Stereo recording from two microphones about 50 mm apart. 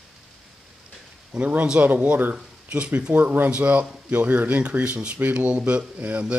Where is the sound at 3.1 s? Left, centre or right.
Right.